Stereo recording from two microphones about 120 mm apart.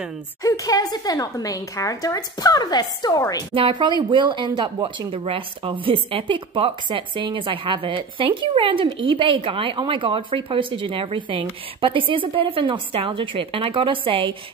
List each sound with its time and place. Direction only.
0.4 s a woman's voice: 30° left (ahead or behind)
3.5 s speech: 45° right (ahead or behind)